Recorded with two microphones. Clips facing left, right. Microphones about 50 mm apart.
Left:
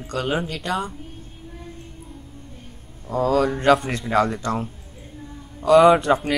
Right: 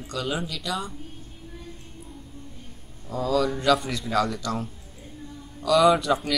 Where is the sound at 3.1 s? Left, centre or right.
Left.